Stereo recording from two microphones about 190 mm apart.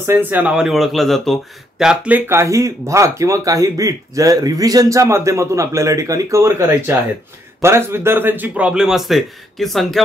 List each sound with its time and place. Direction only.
0.0 s a man's voice: 10° right (ahead or behind)